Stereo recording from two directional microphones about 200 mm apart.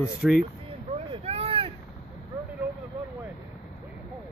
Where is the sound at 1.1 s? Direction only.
30° right (ahead or behind).